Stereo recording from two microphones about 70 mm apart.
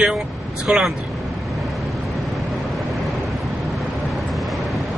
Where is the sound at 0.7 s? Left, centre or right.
Centre.